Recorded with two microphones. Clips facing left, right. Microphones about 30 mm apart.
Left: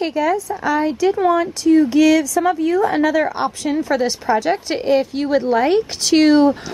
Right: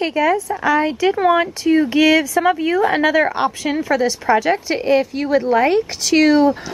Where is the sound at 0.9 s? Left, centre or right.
Right.